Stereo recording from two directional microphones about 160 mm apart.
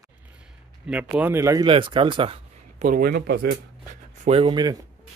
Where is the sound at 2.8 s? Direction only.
65° right (ahead or behind); by 3.5 s 90° right.